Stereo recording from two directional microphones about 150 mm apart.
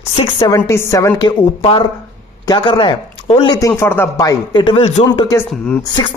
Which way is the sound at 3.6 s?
20° left (ahead or behind).